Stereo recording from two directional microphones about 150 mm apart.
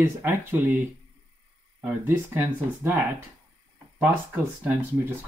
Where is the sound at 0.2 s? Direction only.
15° right (ahead or behind).